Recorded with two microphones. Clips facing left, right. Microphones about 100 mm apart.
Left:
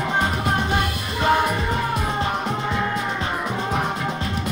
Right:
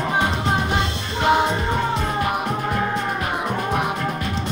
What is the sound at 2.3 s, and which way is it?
Music, 5° right (ahead or behind).